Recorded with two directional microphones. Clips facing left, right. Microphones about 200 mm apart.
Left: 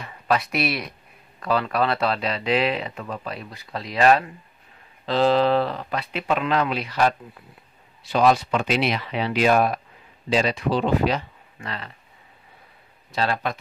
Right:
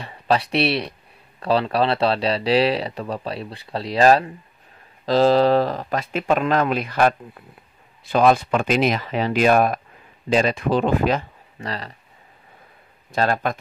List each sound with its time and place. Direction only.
0.0 s speech: 30° right (ahead or behind); by 11.2 s 50° right (ahead or behind)
11.6 s speech: 35° right (ahead or behind)
13.1 s speech: 45° right (ahead or behind)